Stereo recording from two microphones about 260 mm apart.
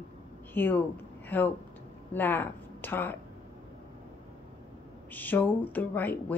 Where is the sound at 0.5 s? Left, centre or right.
Centre.